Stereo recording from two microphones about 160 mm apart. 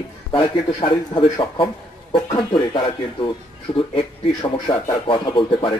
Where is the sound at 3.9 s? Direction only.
35° left (ahead or behind).